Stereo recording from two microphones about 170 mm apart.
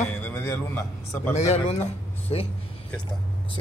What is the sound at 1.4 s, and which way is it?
Speech, 40° left (ahead or behind).